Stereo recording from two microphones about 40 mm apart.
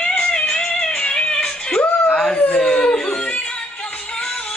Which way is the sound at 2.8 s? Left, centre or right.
Centre.